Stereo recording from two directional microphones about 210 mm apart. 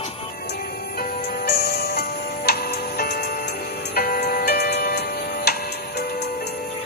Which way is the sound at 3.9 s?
50° left (ahead or behind).